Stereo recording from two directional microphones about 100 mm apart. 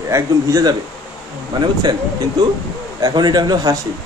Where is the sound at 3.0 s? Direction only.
45° right (ahead or behind).